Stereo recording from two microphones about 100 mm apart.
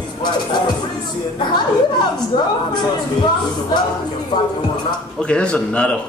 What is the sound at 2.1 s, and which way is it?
Speech, 50° left (ahead or behind).